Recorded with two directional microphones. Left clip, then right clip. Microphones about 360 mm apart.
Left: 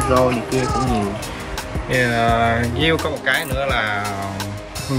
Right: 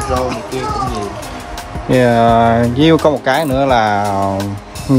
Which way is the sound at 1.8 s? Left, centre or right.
Centre.